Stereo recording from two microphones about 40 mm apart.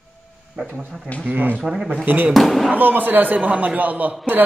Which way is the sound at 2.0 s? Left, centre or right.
Right.